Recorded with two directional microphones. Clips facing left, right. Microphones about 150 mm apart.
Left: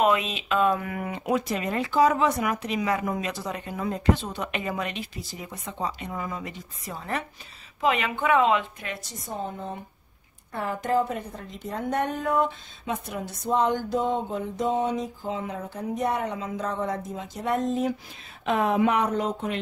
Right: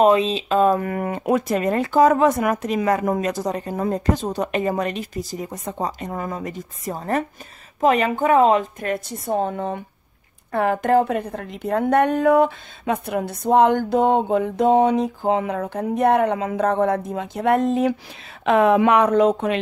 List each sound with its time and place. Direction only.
0.0 s a woman's voice: 30° right (ahead or behind); by 19.6 s 75° right (ahead or behind)